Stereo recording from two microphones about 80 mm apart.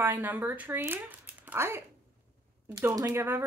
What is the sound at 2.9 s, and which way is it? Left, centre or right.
Speech, right.